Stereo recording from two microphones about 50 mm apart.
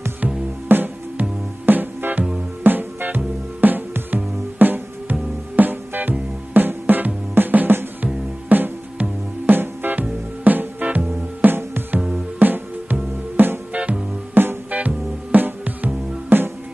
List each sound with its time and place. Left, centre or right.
0.7 s music: right
11.4 s music: right
13.7 s music: right
14.3 s music: right
14.7 s music: right